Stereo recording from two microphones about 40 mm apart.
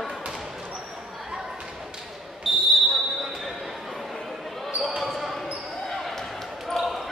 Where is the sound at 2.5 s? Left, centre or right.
Centre.